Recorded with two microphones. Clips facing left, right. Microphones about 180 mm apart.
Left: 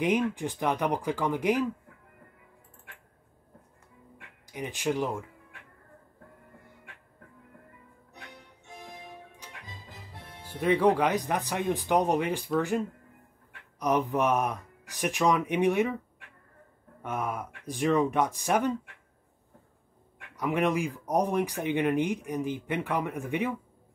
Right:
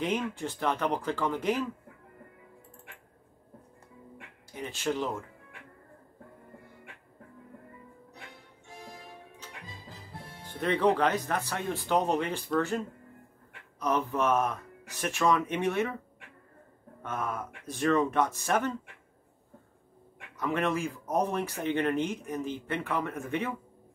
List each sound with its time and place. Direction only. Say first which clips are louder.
0.0 s speech: left 4 dB; 15° left (ahead or behind)
4.5 s speech: left 2 dB; 15° left (ahead or behind)
8.9 s music: left 2 dB; 15° left (ahead or behind)
10.4 s speech: left 3 dB; 10° left (ahead or behind)
17.0 s speech: left 2 dB; 15° left (ahead or behind)
20.3 s speech: left 3 dB; 15° left (ahead or behind)